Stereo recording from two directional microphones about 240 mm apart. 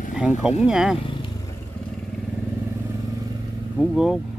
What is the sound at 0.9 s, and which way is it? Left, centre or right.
Vehicle, left.